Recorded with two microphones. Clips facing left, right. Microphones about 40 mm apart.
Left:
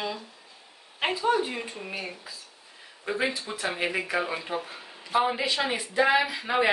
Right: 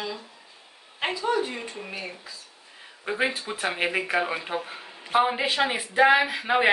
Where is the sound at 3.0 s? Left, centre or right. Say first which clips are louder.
Right 2 dB; centre.